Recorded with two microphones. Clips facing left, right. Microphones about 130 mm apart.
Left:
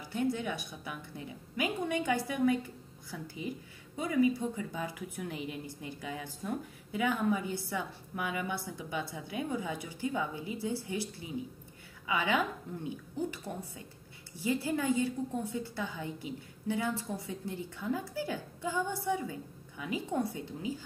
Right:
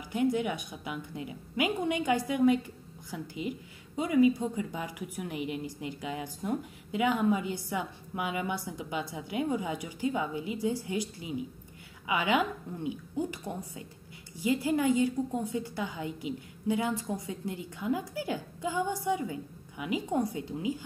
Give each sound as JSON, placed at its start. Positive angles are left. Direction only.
{"t": 0.1, "sound": "a woman's voice", "side_deg": -15}